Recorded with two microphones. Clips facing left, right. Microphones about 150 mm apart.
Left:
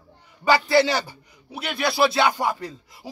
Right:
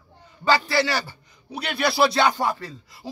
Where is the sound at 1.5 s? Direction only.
Centre (ahead or behind).